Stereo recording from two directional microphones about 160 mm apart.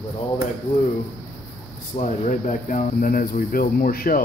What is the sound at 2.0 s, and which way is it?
Speech, 55° left (ahead or behind).